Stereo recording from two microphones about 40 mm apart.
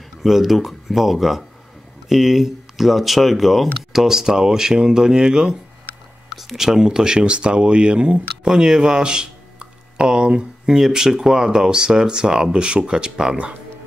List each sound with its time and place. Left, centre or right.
0.2 s speech: centre; by 10.4 s right
10.7 s speech: centre